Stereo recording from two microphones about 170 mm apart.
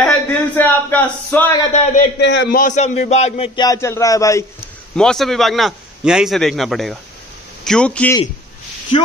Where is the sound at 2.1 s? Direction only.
90° left.